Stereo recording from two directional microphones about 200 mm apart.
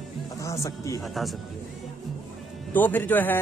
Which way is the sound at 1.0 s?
Centre (ahead or behind).